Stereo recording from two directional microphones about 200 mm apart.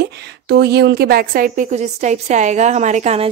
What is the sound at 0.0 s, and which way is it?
A woman's voice, 55° right (ahead or behind).